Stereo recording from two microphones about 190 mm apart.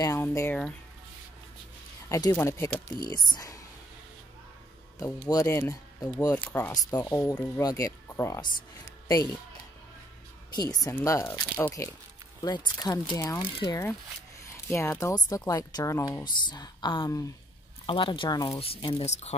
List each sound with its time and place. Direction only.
0.0 s speech: 15° left (ahead or behind)
2.0 s speech: 15° left (ahead or behind)
5.0 s speech: 15° left (ahead or behind)
10.5 s speech: 20° left (ahead or behind); by 19.3 s 35° left (ahead or behind)